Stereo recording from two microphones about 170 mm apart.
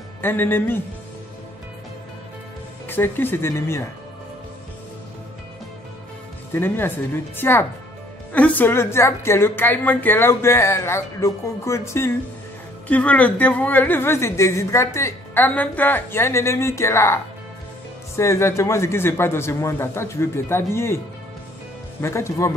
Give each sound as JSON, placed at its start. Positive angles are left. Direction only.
{"t": 0.2, "sound": "a woman's voice", "side_deg": 10}
{"t": 2.9, "sound": "a woman's voice", "side_deg": 10}
{"t": 6.5, "sound": "a woman's voice", "side_deg": 10}
{"t": 22.0, "sound": "a woman's voice", "side_deg": 15}